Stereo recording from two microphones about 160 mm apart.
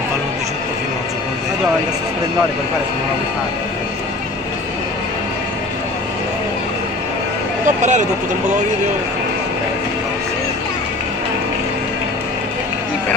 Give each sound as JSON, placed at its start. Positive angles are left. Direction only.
{"t": 7.6, "sound": "speech", "side_deg": -50}